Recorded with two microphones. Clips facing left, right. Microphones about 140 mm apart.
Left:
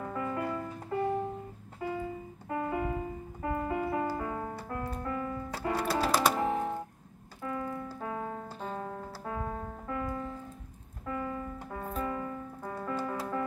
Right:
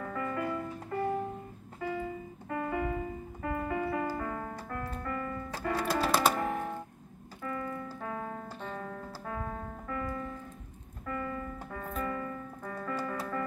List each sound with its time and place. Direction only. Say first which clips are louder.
0.0 s music: even; 15° left (ahead or behind)
2.5 s music: even; 5° left (ahead or behind)
6.3 s music: left 3 dB; 25° left (ahead or behind)
7.4 s keyboard: left 1 dB; 15° left (ahead or behind)
8.7 s music: left 2 dB; 25° left (ahead or behind)